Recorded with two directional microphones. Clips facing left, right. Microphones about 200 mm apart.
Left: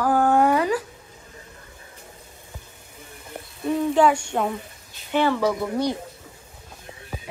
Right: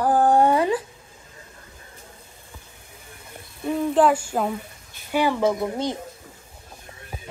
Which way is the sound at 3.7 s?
Centre (ahead or behind).